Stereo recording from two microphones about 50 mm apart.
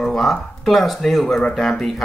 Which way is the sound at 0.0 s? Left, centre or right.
Centre.